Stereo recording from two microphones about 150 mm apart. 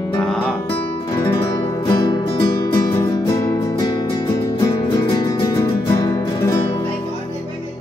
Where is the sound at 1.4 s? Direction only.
20° left (ahead or behind).